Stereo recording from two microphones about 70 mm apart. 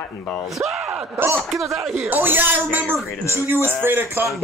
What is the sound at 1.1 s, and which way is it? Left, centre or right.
Speech, right.